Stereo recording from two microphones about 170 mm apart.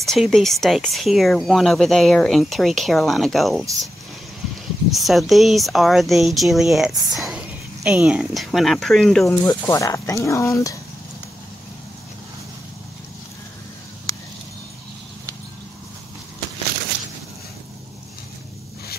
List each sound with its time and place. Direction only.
0.0 s speech: centre (ahead or behind)
4.9 s speech: centre (ahead or behind)
9.3 s speech: 15° left (ahead or behind)